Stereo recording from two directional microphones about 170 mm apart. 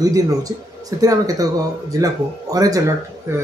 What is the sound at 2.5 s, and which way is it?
Speech, 20° right (ahead or behind).